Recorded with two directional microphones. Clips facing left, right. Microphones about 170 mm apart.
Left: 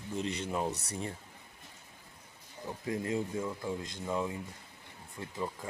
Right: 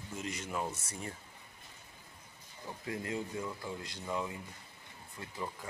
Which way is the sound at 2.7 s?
25° left (ahead or behind).